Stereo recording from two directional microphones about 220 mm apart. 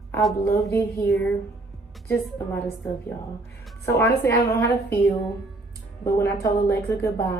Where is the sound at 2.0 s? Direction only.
10° left (ahead or behind).